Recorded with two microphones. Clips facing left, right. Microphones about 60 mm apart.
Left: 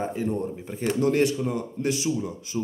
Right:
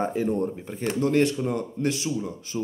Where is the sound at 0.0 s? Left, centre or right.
Centre.